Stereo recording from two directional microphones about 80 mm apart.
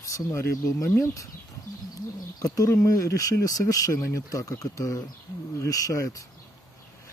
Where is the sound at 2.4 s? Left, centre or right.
Left.